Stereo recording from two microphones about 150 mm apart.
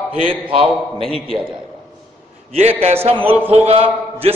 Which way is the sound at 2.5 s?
45° right (ahead or behind).